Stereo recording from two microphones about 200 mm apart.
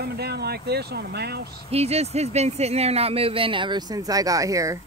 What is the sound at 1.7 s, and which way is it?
Speech, 30° right (ahead or behind).